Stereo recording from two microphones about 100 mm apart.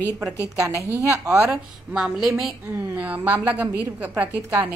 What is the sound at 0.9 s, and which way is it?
Speech, 30° right (ahead or behind).